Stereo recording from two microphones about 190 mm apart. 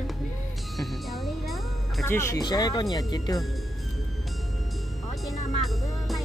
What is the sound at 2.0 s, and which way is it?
Speech, 15° left (ahead or behind).